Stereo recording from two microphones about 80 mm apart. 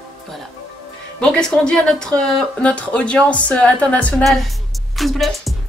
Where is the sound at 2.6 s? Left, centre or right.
Centre.